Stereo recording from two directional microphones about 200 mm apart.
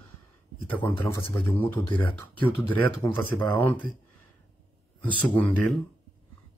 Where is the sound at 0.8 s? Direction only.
10° left (ahead or behind).